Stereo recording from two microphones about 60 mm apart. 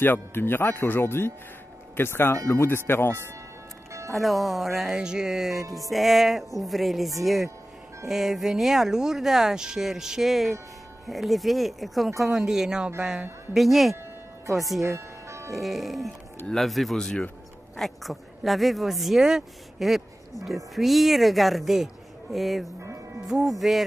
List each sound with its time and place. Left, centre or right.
0.0 s speech: left
4.1 s speech: centre
4.9 s music: centre
5.8 s speech: centre
12.2 s music: centre
13.5 s speech: centre
14.8 s ice cream truck: right
15.5 s speech: centre